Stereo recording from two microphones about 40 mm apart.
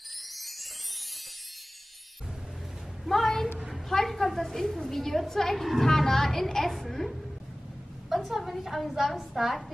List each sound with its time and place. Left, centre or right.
0.4 s music: centre
3.1 s a sound: centre
3.9 s a woman's voice: centre
8.1 s a woman's voice: centre